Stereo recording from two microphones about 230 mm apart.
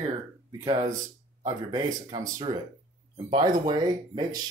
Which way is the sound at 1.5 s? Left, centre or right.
Centre.